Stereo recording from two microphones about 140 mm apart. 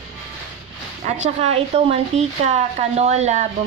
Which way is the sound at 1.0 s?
55° right (ahead or behind).